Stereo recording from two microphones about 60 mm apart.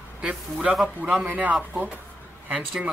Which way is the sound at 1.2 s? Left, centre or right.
Right.